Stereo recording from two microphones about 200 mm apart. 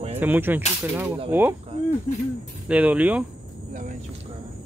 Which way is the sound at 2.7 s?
5° right (ahead or behind).